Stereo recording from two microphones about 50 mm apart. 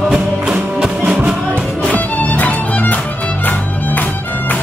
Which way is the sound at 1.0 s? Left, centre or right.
Right.